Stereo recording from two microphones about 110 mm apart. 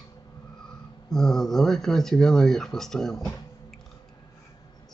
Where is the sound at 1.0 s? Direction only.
5° left (ahead or behind).